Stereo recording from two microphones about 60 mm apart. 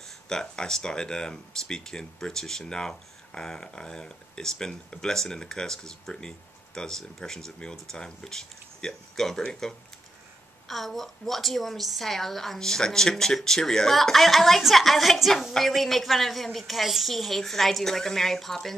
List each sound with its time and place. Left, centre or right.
0.3 s a woman's voice: centre